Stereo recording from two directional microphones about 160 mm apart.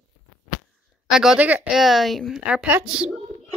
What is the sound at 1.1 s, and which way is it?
A woman's voice, 5° right (ahead or behind).